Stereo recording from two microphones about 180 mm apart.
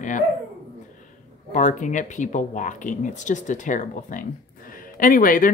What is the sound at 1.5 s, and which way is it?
Speech, 45° left (ahead or behind).